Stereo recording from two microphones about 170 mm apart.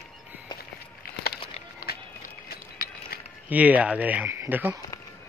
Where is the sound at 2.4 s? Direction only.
65° left (ahead or behind).